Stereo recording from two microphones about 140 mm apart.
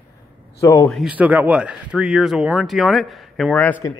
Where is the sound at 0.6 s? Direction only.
20° left (ahead or behind).